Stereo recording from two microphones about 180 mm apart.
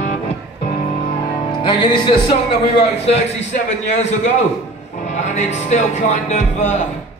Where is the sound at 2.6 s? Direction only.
35° left (ahead or behind).